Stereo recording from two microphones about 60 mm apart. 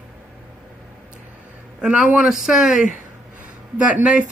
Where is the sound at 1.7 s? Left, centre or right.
Centre.